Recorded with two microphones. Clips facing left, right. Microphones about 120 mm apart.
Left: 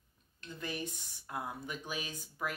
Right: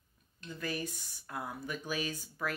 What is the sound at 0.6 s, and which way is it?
Speech, 20° left (ahead or behind).